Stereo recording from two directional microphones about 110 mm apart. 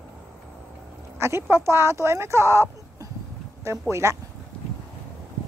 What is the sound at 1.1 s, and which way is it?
Speech, 25° right (ahead or behind).